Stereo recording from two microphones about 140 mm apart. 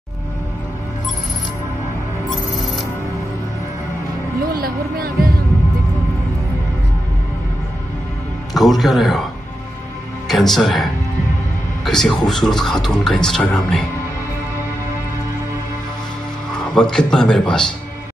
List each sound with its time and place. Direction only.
4.5 s music: 90° right
8.5 s a man's voice: centre (ahead or behind)
16.5 s speech: 5° left (ahead or behind)